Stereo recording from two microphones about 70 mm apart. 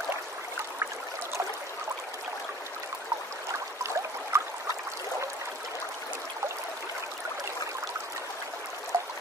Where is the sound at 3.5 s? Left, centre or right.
Right.